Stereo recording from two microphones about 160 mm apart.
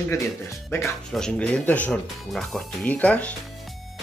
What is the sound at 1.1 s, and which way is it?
Speech, 5° left (ahead or behind).